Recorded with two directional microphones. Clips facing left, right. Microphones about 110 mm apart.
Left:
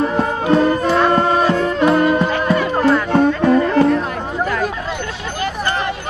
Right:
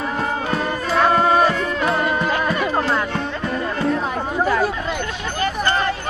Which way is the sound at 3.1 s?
55° left (ahead or behind).